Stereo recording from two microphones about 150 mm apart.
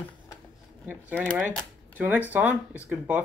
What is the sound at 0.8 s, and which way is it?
Speech, 15° right (ahead or behind).